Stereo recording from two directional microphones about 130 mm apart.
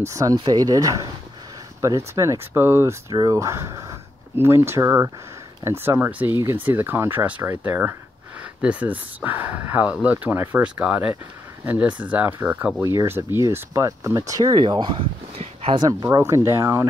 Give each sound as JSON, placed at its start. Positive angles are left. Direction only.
{"t": 0.1, "sound": "speech", "side_deg": -30}
{"t": 3.1, "sound": "speech", "side_deg": -30}
{"t": 12.8, "sound": "speech", "side_deg": -20}
{"t": 15.9, "sound": "speech", "side_deg": -25}